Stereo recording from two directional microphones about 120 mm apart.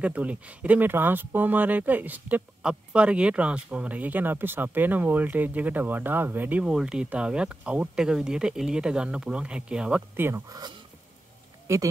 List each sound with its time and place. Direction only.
0.0 s speech: 10° right (ahead or behind)
11.6 s speech: 25° right (ahead or behind)